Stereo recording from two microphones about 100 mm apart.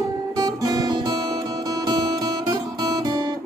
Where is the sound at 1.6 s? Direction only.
40° right (ahead or behind).